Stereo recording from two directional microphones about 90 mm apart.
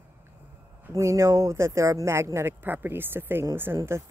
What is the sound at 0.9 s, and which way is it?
Speech, 35° right (ahead or behind).